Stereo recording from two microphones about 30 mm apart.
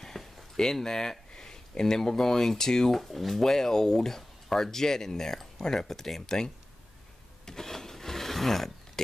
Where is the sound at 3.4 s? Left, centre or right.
Centre.